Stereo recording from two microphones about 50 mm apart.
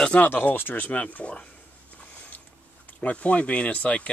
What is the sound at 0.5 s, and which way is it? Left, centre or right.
Speech, left.